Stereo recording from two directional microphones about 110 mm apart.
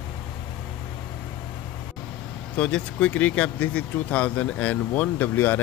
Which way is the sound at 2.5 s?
10° left (ahead or behind).